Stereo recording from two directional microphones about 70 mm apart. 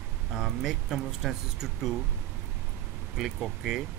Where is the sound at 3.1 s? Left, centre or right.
Centre.